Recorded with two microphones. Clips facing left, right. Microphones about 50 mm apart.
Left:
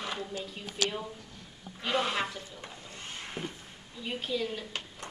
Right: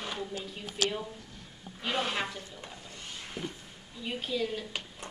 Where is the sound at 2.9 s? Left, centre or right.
Left.